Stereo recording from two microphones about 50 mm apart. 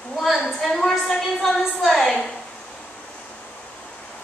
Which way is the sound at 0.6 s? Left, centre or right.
Centre.